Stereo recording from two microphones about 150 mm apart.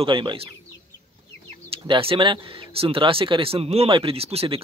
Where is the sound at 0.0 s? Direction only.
35° right (ahead or behind).